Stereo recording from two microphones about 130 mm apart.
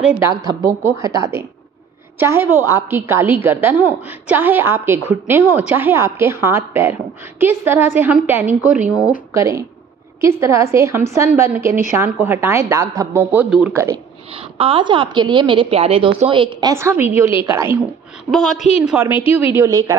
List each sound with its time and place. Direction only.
0.2 s a woman's voice: 25° right (ahead or behind); by 9.2 s 5° right (ahead or behind)
9.3 s a woman's voice: 25° right (ahead or behind)
13.5 s a woman's voice: 5° right (ahead or behind)
14.6 s a woman's voice: 40° right (ahead or behind)
16.7 s a woman's voice: 20° right (ahead or behind)
18.3 s a woman's voice: 50° right (ahead or behind)
18.9 s a woman's voice: 15° right (ahead or behind)